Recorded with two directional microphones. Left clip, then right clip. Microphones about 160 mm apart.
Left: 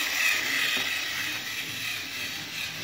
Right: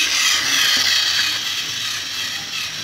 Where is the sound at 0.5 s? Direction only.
25° right (ahead or behind).